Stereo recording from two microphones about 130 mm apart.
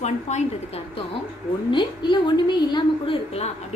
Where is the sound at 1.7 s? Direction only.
35° left (ahead or behind).